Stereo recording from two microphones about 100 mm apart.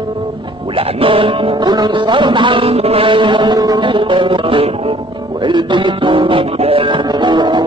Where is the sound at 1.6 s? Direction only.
45° right (ahead or behind); by 5.0 s 75° right (ahead or behind).